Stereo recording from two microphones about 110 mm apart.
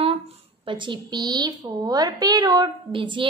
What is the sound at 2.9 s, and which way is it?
Speech, 50° right (ahead or behind).